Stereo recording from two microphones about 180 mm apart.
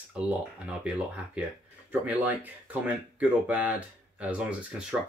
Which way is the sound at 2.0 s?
10° right (ahead or behind).